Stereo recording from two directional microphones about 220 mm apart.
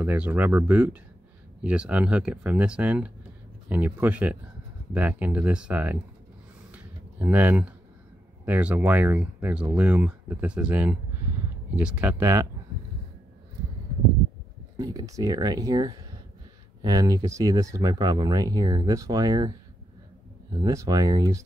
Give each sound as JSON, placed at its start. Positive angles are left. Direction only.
{"t": 0.0, "sound": "speech", "side_deg": -10}
{"t": 6.7, "sound": "a sound", "side_deg": -10}
{"t": 8.5, "sound": "speech", "side_deg": -5}
{"t": 14.8, "sound": "speech", "side_deg": -15}
{"t": 20.6, "sound": "speech", "side_deg": -15}